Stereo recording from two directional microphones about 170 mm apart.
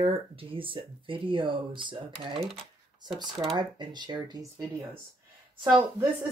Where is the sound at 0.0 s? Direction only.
30° right (ahead or behind).